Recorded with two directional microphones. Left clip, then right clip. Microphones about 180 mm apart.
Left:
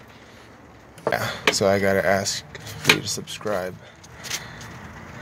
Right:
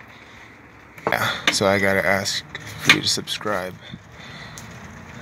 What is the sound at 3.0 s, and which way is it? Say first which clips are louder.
Speech: right 8 dB; 15° left (ahead or behind).